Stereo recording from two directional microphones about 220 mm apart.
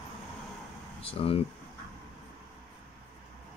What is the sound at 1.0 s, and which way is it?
Speech, 25° left (ahead or behind).